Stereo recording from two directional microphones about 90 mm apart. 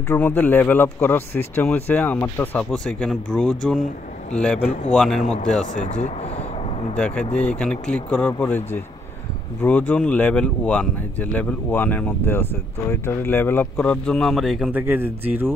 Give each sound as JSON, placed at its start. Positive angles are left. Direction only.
{"t": 0.1, "sound": "speech", "side_deg": 20}
{"t": 2.7, "sound": "speech", "side_deg": 10}
{"t": 7.3, "sound": "speech", "side_deg": 15}
{"t": 13.7, "sound": "speech", "side_deg": 5}
{"t": 14.7, "sound": "speech", "side_deg": -20}